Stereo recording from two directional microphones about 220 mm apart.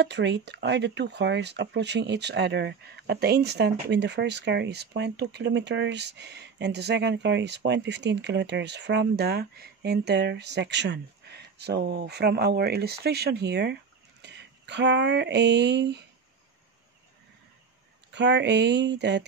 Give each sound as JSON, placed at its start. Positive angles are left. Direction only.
{"t": 0.0, "sound": "speech", "side_deg": -50}
{"t": 18.1, "sound": "speech", "side_deg": -50}